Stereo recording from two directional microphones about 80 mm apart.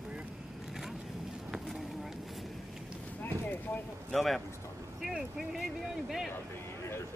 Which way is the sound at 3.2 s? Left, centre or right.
Left.